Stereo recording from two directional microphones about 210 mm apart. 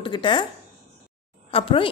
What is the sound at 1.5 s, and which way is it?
Speech, 25° left (ahead or behind).